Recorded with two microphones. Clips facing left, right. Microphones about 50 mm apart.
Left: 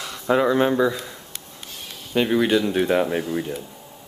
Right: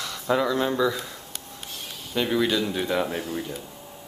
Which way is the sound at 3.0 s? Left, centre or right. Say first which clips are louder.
Left 5 dB; left.